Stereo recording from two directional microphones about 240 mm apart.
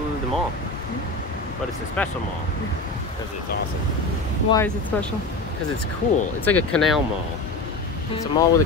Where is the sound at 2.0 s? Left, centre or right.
Centre.